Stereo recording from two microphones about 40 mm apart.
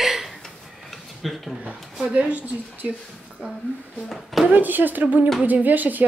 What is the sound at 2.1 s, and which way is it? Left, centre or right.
Speech, right.